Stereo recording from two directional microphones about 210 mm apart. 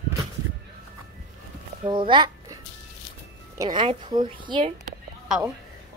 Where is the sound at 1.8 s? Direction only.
25° right (ahead or behind).